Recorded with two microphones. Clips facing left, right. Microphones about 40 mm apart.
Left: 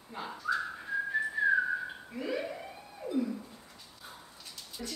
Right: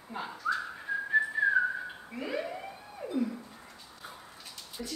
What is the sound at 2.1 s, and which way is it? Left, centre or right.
Emergency vehicle, centre.